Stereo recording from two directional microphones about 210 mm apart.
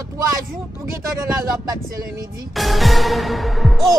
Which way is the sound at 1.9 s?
15° right (ahead or behind).